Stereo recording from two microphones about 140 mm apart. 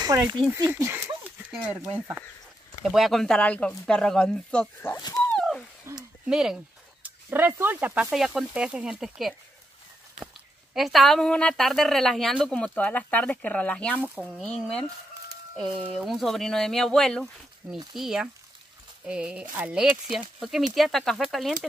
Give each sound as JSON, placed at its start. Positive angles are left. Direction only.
{"t": 0.7, "sound": "dog", "side_deg": -20}
{"t": 1.5, "sound": "speech", "side_deg": -5}
{"t": 4.9, "sound": "speech", "side_deg": 25}
{"t": 5.3, "sound": "a sound", "side_deg": 5}
{"t": 5.9, "sound": "speech", "side_deg": -20}
{"t": 6.2, "sound": "speech", "side_deg": -5}